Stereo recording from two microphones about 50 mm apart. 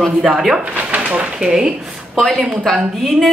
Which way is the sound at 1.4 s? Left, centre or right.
Centre.